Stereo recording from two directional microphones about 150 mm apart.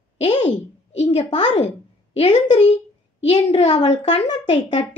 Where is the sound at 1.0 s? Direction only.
45° left (ahead or behind).